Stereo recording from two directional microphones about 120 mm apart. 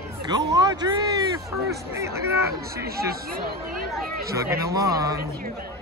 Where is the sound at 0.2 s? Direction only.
35° right (ahead or behind).